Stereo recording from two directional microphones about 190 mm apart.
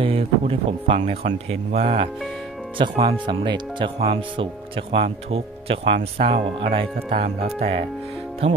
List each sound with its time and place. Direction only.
0.0 s speech: 30° right (ahead or behind)